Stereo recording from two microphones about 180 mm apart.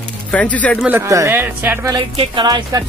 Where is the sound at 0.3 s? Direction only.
5° left (ahead or behind).